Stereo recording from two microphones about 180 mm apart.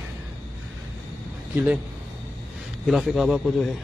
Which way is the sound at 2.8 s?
Centre (ahead or behind).